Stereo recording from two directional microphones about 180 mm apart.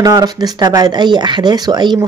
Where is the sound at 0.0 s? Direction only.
20° right (ahead or behind).